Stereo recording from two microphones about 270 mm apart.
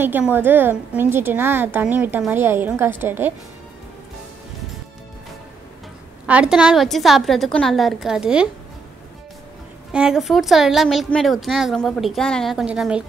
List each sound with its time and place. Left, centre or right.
0.0 s a woman's voice: centre
6.2 s speech: centre
9.9 s speech: centre